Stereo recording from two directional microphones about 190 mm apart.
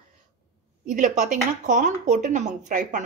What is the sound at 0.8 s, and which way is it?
A woman's voice, 40° right (ahead or behind).